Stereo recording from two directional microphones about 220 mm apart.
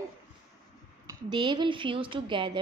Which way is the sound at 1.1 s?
20° right (ahead or behind).